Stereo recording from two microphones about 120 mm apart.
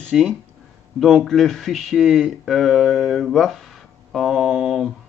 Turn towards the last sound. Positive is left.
turn(degrees=0)  # may be behind; listen again after turning